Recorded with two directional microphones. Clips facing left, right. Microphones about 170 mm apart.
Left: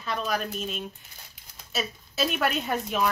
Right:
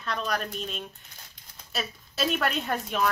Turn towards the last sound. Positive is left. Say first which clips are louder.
# left 1 dB
turn(degrees=5)  # may be behind; listen again after turning